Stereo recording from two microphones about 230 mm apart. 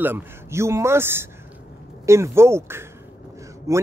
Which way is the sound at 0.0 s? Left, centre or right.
Centre.